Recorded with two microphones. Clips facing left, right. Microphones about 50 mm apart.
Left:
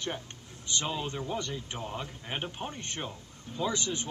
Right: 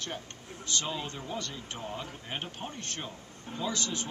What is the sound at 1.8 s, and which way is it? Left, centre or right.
A man's voice, centre.